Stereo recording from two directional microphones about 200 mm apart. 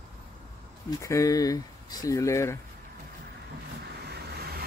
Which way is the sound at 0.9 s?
15° left (ahead or behind).